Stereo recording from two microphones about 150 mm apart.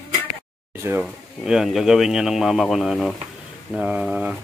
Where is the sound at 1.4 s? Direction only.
Centre (ahead or behind).